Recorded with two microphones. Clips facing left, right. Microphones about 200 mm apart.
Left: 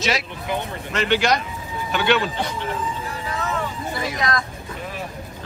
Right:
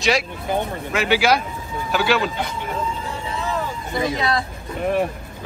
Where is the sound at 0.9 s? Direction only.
5° right (ahead or behind).